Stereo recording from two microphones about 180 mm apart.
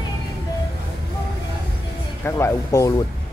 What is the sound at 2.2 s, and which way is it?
Speech, 15° left (ahead or behind).